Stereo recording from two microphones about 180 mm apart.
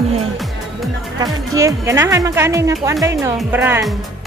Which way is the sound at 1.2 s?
15° right (ahead or behind).